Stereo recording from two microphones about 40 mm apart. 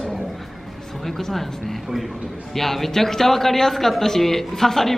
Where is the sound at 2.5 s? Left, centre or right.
Centre.